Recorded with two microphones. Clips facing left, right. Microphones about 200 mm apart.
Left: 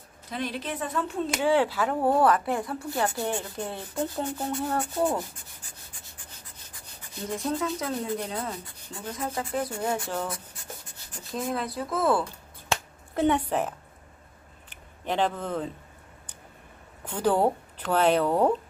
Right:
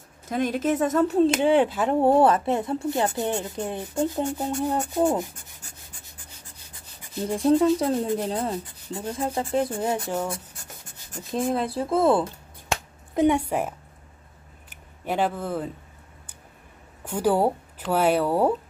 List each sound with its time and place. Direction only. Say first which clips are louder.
0.3 s speech: right 9 dB; 45° right (ahead or behind)
1.3 s a woman's voice: right 4 dB; 20° right (ahead or behind)
7.2 s speech: right 9 dB; 35° right (ahead or behind)
9.8 s a woman's voice: right 3 dB; 15° right (ahead or behind)
11.3 s speech: right 5 dB; 30° right (ahead or behind)
13.1 s a woman's voice: right 3 dB; 15° right (ahead or behind)
17.0 s speech: right 2 dB; 10° right (ahead or behind)